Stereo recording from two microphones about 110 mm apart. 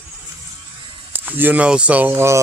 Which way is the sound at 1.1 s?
15° right (ahead or behind).